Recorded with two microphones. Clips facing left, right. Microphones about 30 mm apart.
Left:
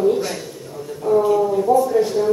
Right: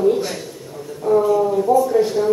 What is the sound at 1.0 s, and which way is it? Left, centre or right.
Speech, right.